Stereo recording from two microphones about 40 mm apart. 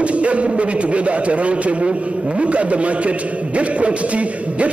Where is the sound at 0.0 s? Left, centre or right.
Right.